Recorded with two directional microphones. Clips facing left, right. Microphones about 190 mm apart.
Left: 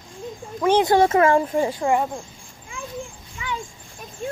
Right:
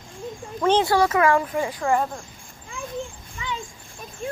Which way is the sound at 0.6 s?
15° left (ahead or behind).